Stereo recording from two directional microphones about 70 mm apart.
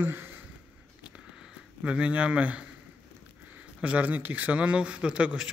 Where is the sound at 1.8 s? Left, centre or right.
Centre.